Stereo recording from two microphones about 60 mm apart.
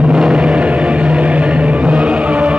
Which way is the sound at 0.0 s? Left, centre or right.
Centre.